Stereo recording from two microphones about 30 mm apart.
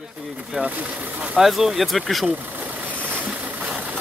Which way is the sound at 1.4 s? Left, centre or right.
Centre.